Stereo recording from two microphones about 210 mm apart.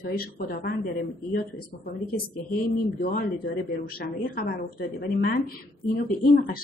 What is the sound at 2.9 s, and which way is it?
A woman's voice, 45° left (ahead or behind).